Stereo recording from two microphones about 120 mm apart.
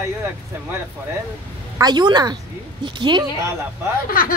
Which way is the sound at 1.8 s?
35° right (ahead or behind).